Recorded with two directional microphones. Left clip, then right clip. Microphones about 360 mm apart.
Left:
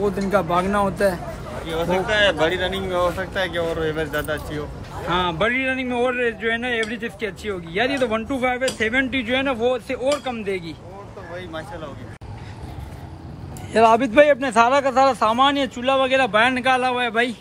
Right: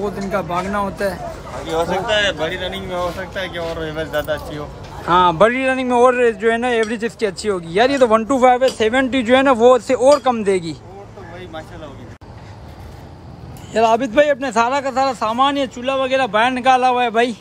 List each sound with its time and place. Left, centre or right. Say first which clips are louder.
0.0 s a man's voice: left 1 dB; centre
1.7 s speech: right 4 dB; centre
2.2 s speech: left 1 dB; centre
2.6 s speech: left 1 dB; centre
13.7 s a man's voice: even; centre